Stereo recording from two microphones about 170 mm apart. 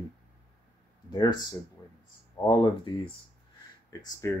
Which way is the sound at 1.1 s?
25° left (ahead or behind).